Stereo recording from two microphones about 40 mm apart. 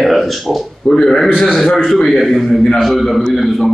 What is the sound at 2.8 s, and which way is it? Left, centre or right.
Speech, centre.